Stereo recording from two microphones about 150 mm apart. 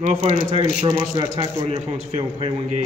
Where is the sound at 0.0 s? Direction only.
45° right (ahead or behind).